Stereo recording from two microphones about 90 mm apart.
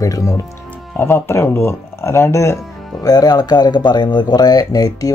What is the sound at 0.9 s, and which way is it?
Speech, 25° left (ahead or behind).